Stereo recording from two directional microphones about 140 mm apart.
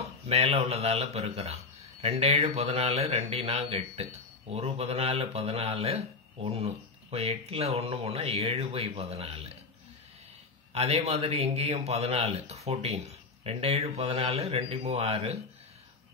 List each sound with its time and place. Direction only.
0.3 s speech: 50° right (ahead or behind)
10.7 s speech: 50° right (ahead or behind)